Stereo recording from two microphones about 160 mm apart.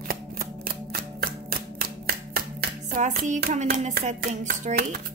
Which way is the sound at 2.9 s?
55° right (ahead or behind).